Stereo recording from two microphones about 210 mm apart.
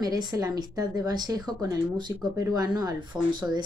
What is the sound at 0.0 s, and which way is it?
Speech, 20° right (ahead or behind).